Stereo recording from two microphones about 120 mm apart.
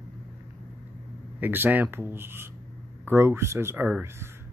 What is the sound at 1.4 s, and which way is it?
Speech, 15° right (ahead or behind).